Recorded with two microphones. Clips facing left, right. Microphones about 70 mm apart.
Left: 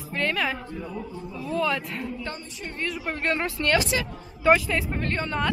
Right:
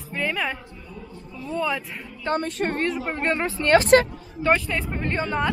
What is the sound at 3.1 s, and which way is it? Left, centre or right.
Speech, right.